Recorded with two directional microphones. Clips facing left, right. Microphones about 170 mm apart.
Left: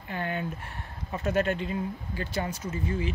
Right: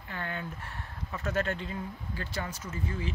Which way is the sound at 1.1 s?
20° left (ahead or behind).